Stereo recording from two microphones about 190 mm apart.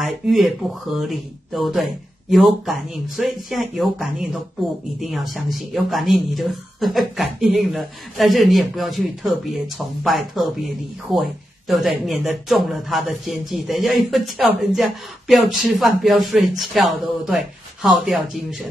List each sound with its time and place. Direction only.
0.0 s speech: centre (ahead or behind)